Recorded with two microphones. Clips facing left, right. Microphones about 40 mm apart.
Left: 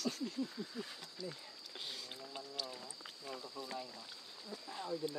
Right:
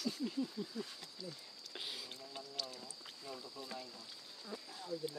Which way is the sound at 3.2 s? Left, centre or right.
Centre.